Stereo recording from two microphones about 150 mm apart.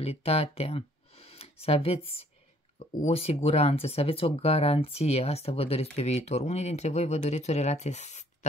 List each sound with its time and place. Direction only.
0.0 s speech: 45° left (ahead or behind)